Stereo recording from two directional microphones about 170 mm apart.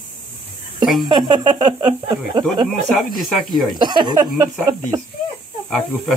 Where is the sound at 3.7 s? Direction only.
25° right (ahead or behind).